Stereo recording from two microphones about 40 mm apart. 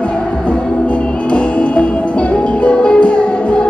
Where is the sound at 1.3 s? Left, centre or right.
Left.